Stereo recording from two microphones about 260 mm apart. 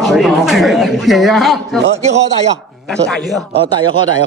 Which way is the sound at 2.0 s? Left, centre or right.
Right.